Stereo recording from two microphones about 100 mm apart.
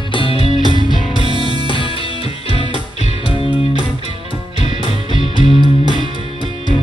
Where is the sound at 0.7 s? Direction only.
50° left (ahead or behind).